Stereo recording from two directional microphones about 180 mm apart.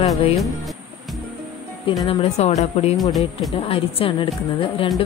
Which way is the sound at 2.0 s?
35° left (ahead or behind).